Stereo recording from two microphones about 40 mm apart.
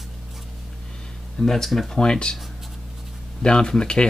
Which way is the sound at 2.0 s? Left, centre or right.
Left.